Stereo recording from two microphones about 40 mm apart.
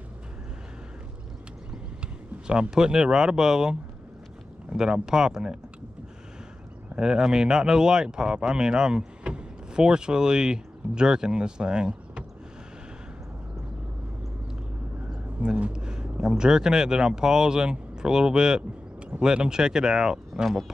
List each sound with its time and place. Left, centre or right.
2.0 s a sound: right
2.7 s speech: centre
4.7 s speech: centre
7.0 s speech: centre
15.4 s speech: right
15.7 s speech: right
20.4 s a man's voice: centre